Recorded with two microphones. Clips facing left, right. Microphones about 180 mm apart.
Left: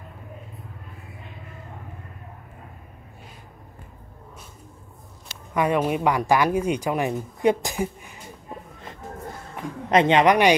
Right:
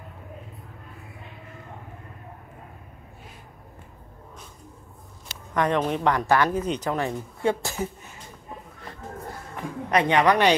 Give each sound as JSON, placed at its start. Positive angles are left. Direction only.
{"t": 5.5, "sound": "speech", "side_deg": 10}
{"t": 9.8, "sound": "a woman's voice", "side_deg": 25}